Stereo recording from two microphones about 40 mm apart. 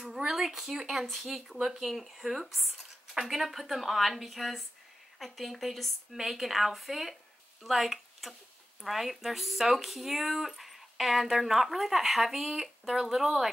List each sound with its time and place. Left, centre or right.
0.3 s speech: centre